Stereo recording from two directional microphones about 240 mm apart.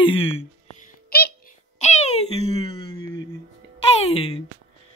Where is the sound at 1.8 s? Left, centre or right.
Left.